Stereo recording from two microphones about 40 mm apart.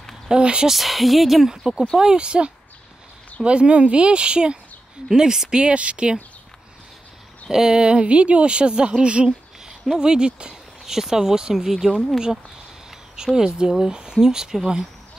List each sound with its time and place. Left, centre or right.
0.3 s a sound: right
0.7 s speech: centre
2.0 s speech: right
7.5 s speech: centre
13.1 s speech: centre